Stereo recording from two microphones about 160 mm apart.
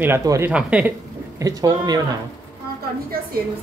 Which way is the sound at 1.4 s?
20° right (ahead or behind).